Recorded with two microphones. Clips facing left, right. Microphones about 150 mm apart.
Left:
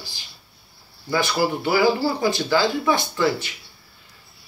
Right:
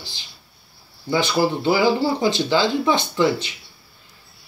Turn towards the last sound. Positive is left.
turn(degrees=-20)  # may be behind; listen again after turning